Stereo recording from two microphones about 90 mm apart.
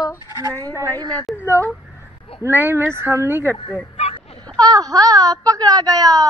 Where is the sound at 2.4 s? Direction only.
25° right (ahead or behind).